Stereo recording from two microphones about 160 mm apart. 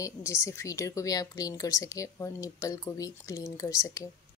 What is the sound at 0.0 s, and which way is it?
Speech, 15° left (ahead or behind).